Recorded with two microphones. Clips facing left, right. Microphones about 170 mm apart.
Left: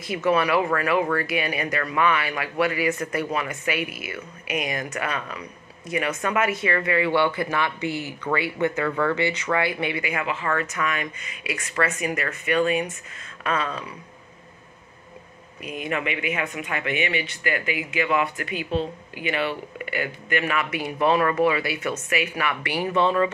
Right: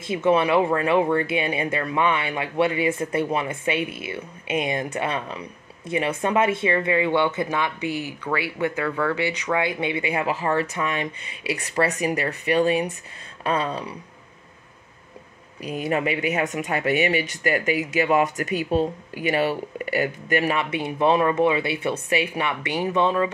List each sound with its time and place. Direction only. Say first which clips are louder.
0.0 s speech: right 2 dB; 25° right (ahead or behind)
15.6 s speech: right 4 dB; 35° right (ahead or behind); by 23.3 s 10° right (ahead or behind)